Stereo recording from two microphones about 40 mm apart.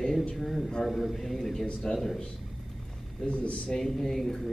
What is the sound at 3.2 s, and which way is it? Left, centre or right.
Speech, left.